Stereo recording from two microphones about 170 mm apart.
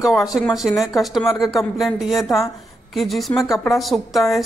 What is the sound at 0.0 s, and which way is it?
A woman's voice, centre (ahead or behind).